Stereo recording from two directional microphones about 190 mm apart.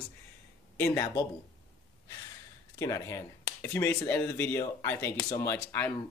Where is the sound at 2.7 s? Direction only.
15° left (ahead or behind).